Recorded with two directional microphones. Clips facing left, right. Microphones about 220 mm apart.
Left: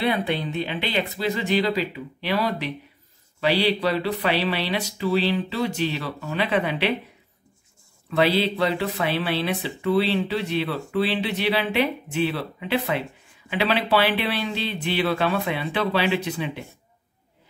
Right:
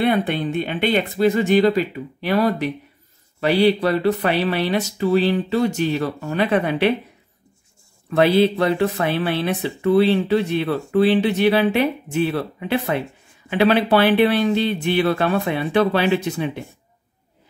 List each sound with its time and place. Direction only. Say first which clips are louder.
0.3 s speech: right 4 dB; 50° right (ahead or behind)
8.1 s speech: right 6 dB; 50° right (ahead or behind)